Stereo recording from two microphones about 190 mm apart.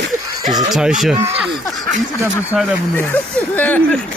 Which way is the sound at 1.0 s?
5° right (ahead or behind).